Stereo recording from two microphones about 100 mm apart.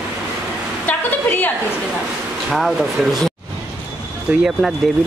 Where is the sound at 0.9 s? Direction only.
20° left (ahead or behind).